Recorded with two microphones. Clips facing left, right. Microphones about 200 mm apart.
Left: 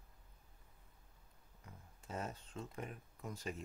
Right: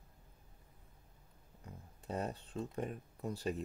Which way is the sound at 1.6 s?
35° right (ahead or behind).